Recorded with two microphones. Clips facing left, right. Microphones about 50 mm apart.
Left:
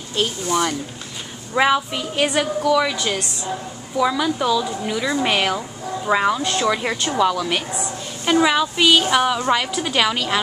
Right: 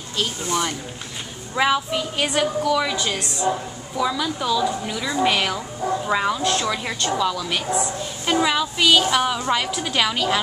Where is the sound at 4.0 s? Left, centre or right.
Centre.